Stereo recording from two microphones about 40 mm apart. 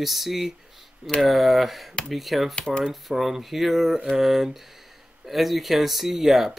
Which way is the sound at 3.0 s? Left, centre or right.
Centre.